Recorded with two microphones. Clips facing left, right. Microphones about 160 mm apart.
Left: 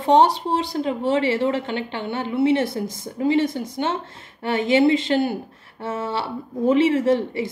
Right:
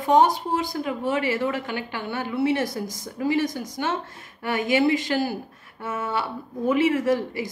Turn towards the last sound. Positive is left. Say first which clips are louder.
# left 3 dB
turn(degrees=25)  # may be behind; listen again after turning